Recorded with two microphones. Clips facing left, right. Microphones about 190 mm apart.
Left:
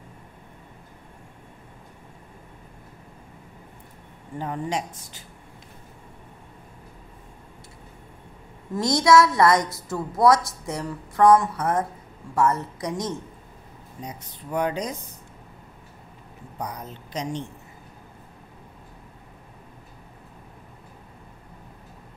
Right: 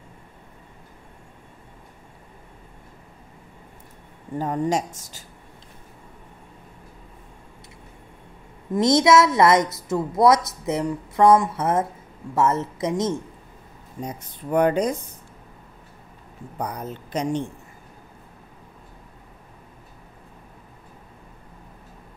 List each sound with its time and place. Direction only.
4.4 s speech: 45° right (ahead or behind)
8.7 s a woman's voice: 20° right (ahead or behind)
14.0 s speech: 55° right (ahead or behind)
16.5 s speech: 55° right (ahead or behind)